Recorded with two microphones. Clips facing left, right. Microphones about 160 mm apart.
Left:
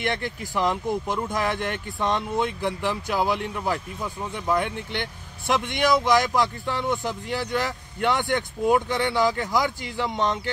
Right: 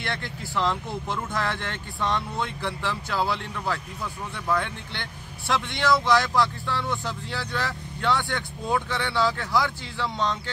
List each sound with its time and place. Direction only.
0.0 s speech: 15° left (ahead or behind)